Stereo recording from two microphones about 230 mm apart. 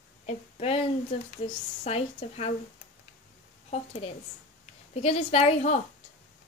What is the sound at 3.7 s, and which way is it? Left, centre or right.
A woman's voice, left.